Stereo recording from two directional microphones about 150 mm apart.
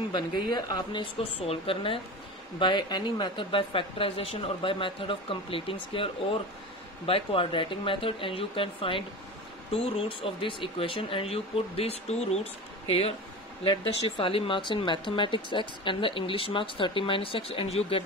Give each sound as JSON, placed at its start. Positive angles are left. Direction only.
{"t": 0.1, "sound": "speech", "side_deg": 25}
{"t": 1.4, "sound": "speech", "side_deg": 40}
{"t": 13.7, "sound": "speech", "side_deg": 35}